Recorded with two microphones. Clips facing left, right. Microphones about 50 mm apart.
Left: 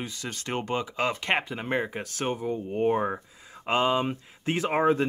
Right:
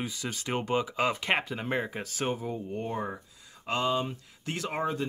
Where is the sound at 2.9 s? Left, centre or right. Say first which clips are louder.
Left 8 dB; left.